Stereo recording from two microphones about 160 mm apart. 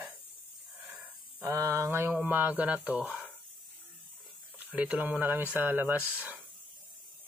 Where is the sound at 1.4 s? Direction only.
20° right (ahead or behind).